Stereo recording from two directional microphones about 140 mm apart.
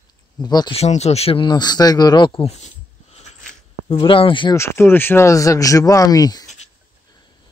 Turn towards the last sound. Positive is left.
turn(degrees=25)  # may be behind; listen again after turning